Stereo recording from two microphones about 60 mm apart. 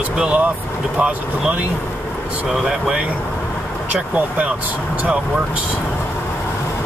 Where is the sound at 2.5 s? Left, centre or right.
Centre.